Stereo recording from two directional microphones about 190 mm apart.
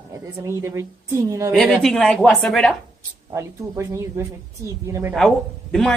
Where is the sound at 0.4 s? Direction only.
15° right (ahead or behind).